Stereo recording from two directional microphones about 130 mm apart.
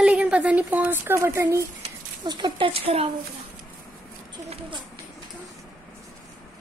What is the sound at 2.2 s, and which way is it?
Speech, 35° right (ahead or behind).